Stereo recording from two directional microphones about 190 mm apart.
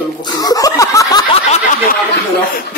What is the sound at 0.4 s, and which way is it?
Snicker, 20° left (ahead or behind).